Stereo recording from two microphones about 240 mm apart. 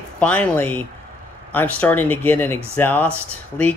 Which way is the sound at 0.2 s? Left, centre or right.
Centre.